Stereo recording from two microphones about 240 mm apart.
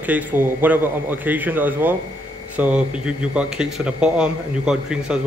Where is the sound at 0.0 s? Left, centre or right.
Centre.